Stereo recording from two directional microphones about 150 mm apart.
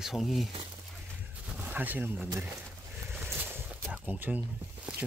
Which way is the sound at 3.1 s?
15° right (ahead or behind).